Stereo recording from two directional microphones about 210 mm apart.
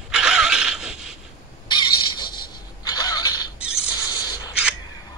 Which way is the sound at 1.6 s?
20° left (ahead or behind).